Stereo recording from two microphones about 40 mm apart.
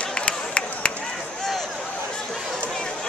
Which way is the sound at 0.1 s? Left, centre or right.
Left.